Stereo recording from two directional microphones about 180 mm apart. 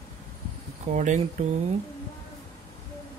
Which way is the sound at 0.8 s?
40° right (ahead or behind).